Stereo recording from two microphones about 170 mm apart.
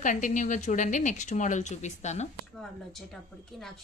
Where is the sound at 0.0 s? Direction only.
50° left (ahead or behind).